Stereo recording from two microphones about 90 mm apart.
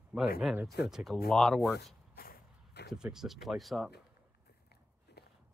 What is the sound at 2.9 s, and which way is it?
Speech, 5° right (ahead or behind).